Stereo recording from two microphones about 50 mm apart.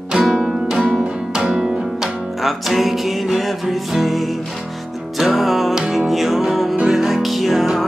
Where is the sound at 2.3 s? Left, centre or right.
Centre.